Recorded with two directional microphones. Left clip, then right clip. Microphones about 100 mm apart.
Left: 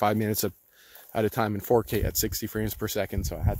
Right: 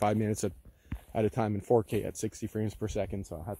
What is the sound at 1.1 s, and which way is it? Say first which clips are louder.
Speech: left 4 dB; 35° left (ahead or behind).